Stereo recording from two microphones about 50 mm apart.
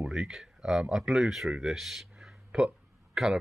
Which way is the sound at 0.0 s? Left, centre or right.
Centre.